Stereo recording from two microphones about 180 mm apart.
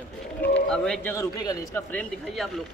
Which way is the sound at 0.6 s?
5° left (ahead or behind).